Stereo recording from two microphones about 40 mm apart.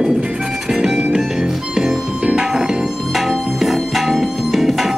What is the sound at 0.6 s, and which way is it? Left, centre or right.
Music, centre.